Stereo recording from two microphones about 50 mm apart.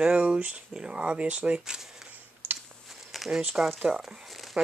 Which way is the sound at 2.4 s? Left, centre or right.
Right.